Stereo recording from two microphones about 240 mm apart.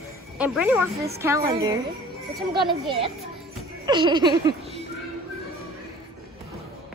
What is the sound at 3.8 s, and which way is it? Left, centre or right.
Speech, centre.